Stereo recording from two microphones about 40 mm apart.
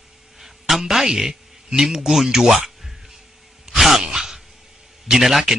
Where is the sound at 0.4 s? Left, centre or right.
Centre.